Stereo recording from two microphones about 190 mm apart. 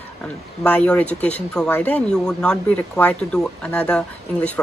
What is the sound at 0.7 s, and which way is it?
Speech, 5° left (ahead or behind).